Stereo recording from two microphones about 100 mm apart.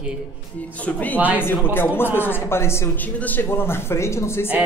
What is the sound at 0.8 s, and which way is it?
Speech, 15° left (ahead or behind).